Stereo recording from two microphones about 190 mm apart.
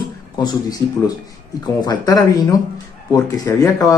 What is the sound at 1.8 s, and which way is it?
Speech, 20° left (ahead or behind).